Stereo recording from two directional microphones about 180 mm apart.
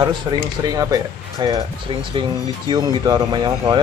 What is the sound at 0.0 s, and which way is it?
Speech, 20° right (ahead or behind).